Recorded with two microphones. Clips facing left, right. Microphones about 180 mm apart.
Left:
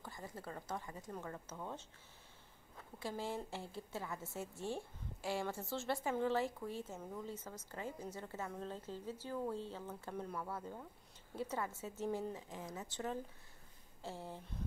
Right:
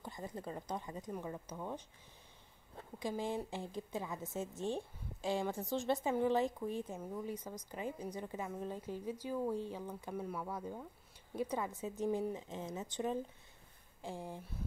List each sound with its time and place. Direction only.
0.0 s a woman's voice: 20° right (ahead or behind)
3.0 s a woman's voice: 15° right (ahead or behind)